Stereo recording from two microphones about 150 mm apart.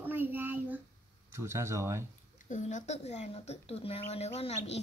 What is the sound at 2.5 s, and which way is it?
Speech, 50° left (ahead or behind).